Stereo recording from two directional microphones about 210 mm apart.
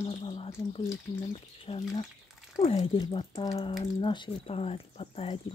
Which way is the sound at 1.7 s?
30° left (ahead or behind).